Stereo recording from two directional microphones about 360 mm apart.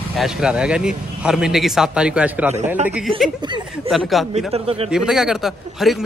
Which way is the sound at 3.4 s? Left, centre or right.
Centre.